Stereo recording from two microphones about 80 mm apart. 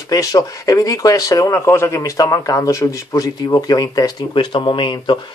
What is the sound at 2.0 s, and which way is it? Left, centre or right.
Speech, left.